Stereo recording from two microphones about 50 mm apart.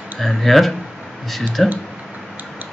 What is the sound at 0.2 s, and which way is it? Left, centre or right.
Speech, centre.